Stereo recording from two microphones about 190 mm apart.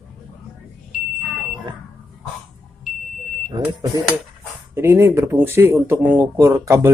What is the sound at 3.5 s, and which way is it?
Speech, 25° right (ahead or behind).